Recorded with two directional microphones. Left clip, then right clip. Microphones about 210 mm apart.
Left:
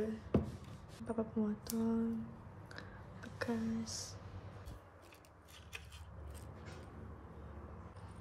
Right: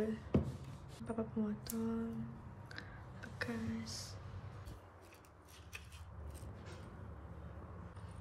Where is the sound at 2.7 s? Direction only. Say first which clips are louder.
Right 1 dB; 20° left (ahead or behind).